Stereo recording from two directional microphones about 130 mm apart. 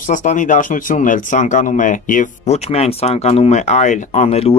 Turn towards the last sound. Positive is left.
turn(degrees=50)  # may be behind; listen again after turning